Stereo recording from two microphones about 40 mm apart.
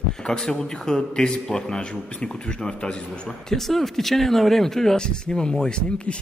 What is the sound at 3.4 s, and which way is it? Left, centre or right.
Speech, centre.